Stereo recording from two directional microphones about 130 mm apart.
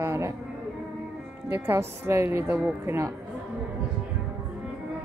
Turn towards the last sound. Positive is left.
turn(degrees=-20)  # may be behind; listen again after turning